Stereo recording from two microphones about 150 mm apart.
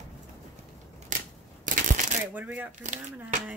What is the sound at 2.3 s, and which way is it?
Speech, 10° right (ahead or behind).